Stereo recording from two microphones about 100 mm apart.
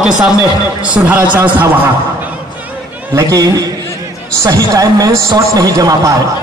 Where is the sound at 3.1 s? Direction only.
30° right (ahead or behind).